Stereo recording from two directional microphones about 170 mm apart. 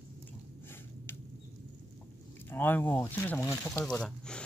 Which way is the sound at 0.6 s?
15° left (ahead or behind).